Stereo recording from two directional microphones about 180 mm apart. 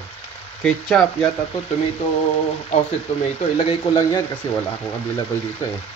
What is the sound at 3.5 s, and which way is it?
Speech, 30° left (ahead or behind).